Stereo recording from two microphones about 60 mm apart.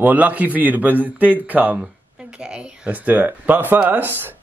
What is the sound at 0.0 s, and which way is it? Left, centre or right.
A man's voice, right.